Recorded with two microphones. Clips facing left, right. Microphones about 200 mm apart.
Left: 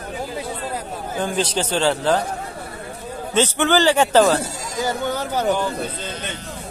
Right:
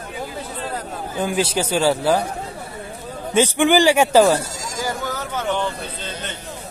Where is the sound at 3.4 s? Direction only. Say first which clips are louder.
Right 2 dB; 10° right (ahead or behind).